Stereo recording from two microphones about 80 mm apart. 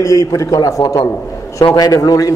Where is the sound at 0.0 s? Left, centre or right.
Left.